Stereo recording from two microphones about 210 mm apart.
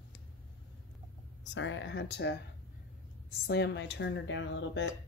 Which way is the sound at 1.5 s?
60° left (ahead or behind).